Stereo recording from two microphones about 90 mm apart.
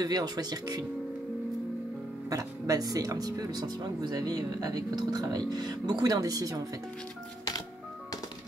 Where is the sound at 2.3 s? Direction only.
40° right (ahead or behind).